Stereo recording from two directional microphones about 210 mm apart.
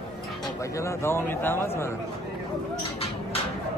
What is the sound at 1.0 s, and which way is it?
Speech, 10° left (ahead or behind).